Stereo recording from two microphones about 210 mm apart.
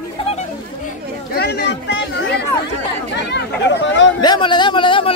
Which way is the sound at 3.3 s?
60° left (ahead or behind).